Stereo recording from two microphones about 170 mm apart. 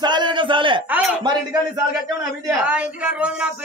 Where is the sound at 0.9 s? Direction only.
10° right (ahead or behind).